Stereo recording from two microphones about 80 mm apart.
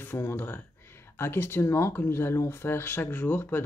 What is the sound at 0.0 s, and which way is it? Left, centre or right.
Speech, left.